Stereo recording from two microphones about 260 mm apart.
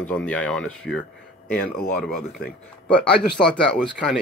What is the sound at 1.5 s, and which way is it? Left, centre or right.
Speech, left.